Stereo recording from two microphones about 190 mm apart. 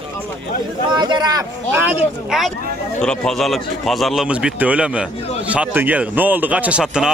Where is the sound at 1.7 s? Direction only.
10° right (ahead or behind).